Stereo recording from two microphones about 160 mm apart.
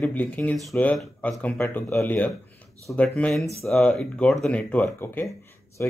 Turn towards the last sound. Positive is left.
turn(degrees=15)  # may be behind; listen again after turning